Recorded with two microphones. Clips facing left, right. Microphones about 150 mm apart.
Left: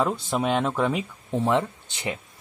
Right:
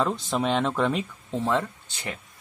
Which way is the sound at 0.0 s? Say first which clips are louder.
Left 1 dB; 10° left (ahead or behind).